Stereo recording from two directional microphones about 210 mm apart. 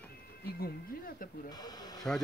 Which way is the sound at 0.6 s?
45° left (ahead or behind).